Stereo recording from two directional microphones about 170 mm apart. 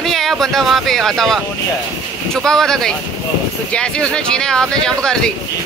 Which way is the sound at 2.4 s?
5° left (ahead or behind).